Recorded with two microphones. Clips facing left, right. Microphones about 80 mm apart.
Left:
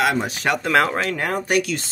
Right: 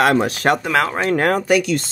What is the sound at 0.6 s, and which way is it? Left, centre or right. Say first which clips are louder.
Speech: even; centre.